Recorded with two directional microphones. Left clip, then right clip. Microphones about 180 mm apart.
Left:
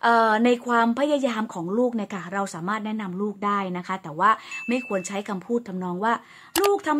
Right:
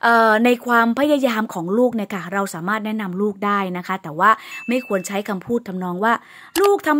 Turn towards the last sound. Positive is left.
turn(degrees=0)  # may be behind; listen again after turning